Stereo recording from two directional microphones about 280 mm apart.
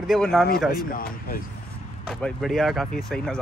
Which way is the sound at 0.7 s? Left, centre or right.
Left.